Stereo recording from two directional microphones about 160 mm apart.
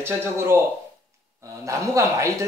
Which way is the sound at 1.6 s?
20° right (ahead or behind).